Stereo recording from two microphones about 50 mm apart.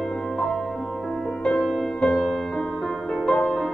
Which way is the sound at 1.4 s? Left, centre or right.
Centre.